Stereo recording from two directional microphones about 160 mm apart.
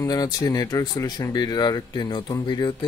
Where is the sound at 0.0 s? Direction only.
25° left (ahead or behind).